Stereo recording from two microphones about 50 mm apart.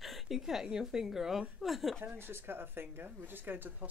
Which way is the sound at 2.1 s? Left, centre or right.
Right.